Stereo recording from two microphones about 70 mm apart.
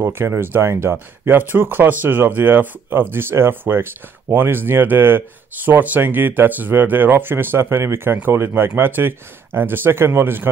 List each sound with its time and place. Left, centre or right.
0.0 s speech: right